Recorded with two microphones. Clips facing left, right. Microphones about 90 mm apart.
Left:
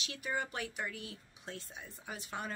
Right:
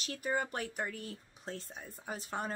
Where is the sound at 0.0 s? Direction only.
40° right (ahead or behind).